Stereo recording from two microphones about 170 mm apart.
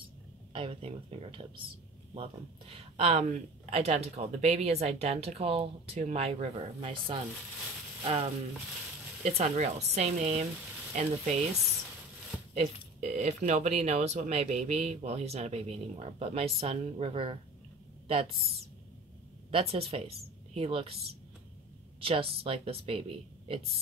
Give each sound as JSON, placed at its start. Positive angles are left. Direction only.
{"t": 0.5, "sound": "speech", "side_deg": -30}
{"t": 12.5, "sound": "speech", "side_deg": -40}
{"t": 19.5, "sound": "speech", "side_deg": -35}